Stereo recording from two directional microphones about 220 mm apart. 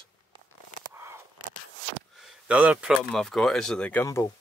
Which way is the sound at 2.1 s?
5° right (ahead or behind).